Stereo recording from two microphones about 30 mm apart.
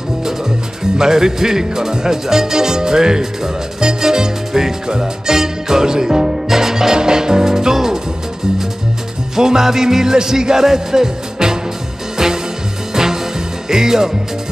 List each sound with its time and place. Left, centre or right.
0.9 s speech: centre
3.8 s music: right
9.3 s music: centre
12.9 s music: centre
13.7 s speech: centre